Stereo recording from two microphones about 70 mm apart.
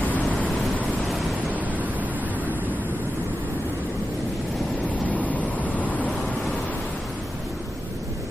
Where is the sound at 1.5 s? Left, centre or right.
Right.